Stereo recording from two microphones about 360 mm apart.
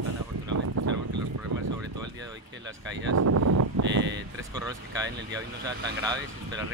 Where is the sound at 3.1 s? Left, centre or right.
Right.